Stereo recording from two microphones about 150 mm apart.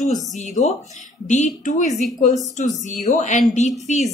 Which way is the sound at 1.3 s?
55° left (ahead or behind).